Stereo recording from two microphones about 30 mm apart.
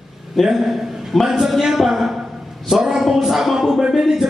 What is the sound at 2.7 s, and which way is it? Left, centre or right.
Speech, centre.